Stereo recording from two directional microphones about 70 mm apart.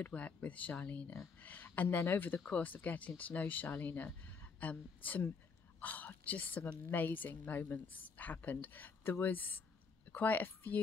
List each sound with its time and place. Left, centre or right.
0.0 s speech: centre